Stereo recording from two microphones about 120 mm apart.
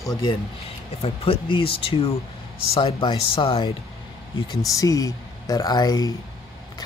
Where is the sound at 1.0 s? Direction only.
50° left (ahead or behind).